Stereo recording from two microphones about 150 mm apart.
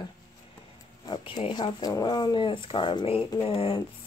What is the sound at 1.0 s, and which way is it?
Speech, 35° left (ahead or behind).